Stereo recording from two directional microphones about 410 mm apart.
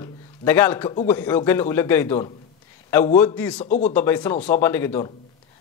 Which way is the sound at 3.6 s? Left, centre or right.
Centre.